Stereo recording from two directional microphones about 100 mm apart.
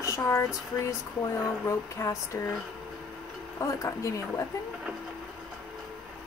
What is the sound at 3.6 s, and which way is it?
Speech, 30° left (ahead or behind).